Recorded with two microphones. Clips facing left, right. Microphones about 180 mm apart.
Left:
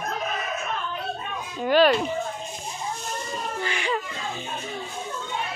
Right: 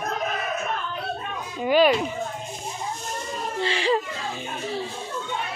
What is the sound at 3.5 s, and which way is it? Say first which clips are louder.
Speech: right 6 dB; 30° right (ahead or behind).